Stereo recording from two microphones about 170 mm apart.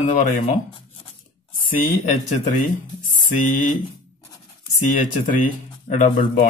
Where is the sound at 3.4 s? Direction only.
50° left (ahead or behind).